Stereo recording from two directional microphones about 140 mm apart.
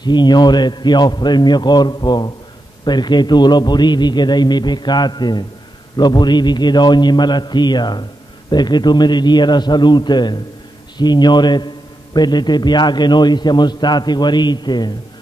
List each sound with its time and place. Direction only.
0.0 s a man's voice: 30° left (ahead or behind)